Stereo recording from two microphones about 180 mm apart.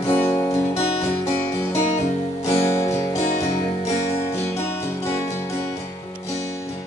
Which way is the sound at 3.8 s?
35° left (ahead or behind).